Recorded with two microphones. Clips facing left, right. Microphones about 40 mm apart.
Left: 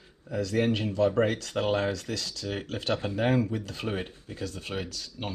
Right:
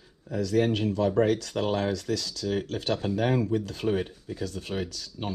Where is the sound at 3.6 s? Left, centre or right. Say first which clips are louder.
Right 5 dB; left.